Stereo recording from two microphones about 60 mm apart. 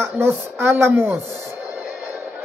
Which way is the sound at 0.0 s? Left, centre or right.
Right.